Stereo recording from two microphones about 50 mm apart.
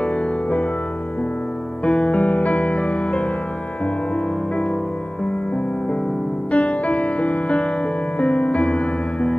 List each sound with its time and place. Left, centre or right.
1.9 s music: centre
6.5 s music: left